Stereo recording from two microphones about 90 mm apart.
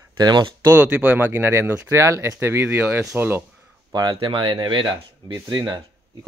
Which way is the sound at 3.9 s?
45° right (ahead or behind).